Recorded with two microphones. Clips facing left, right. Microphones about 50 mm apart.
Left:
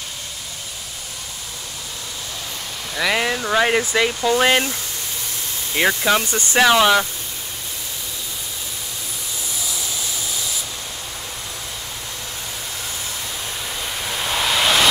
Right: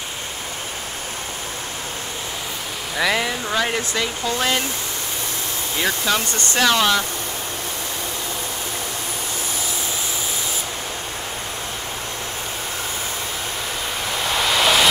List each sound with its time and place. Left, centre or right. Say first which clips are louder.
3.2 s speech: left 3 dB; centre
5.9 s speech: left 4 dB; centre
14.2 s waves: right 1 dB; centre